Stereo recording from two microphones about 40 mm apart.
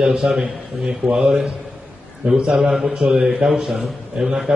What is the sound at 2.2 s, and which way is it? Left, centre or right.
Speech, right.